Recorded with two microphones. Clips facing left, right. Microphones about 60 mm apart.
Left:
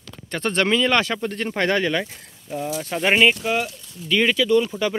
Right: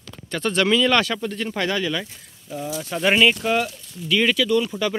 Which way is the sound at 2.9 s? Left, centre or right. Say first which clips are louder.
Even; centre.